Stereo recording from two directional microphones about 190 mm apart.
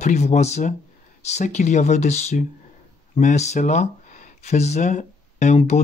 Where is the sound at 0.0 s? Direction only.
40° left (ahead or behind).